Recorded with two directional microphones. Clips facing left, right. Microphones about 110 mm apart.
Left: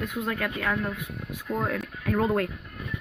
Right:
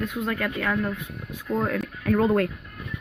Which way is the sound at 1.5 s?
Centre (ahead or behind).